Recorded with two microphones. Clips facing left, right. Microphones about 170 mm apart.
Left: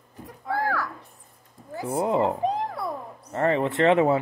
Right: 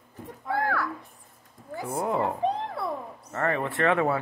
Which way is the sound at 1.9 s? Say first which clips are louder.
Left 4 dB; 25° left (ahead or behind).